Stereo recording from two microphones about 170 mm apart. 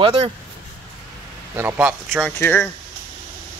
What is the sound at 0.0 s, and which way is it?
Speech, 35° right (ahead or behind).